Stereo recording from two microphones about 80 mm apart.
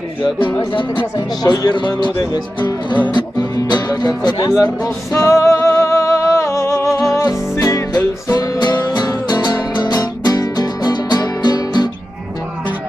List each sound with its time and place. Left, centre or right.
0.6 s speech: left
1.1 s speech: left
3.2 s music: left
5.1 s music: left